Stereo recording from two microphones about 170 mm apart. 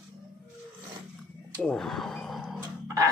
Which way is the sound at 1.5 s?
Centre (ahead or behind).